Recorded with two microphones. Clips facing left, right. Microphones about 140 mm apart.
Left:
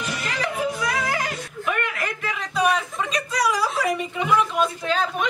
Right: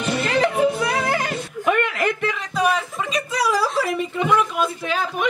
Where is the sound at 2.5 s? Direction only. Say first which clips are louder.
Left 1 dB; centre (ahead or behind).